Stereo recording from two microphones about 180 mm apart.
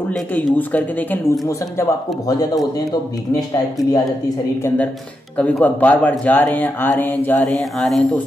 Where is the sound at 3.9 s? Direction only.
20° left (ahead or behind).